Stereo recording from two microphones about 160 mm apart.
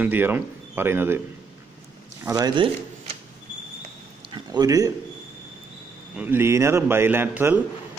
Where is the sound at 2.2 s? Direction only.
25° right (ahead or behind).